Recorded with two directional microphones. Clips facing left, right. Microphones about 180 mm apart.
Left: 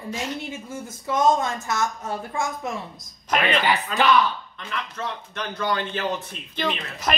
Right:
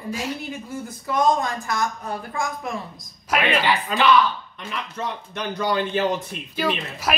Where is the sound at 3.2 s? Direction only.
10° right (ahead or behind).